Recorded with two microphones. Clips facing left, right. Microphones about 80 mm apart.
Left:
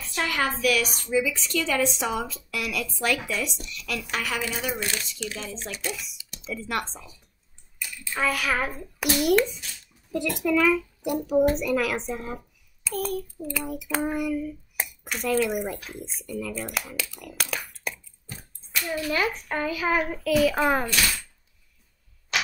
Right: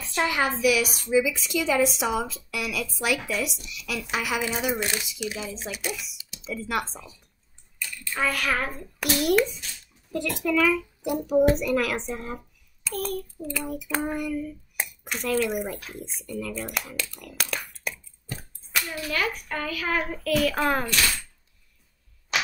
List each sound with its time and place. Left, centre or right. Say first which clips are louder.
0.2 s a woman's voice: right 2 dB; centre
18.9 s a child's voice: left 4 dB; centre
20.0 s a child's voice: left 2 dB; centre